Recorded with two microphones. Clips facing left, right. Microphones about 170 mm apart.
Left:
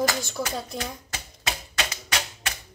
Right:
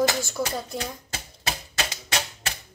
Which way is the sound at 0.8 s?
35° right (ahead or behind).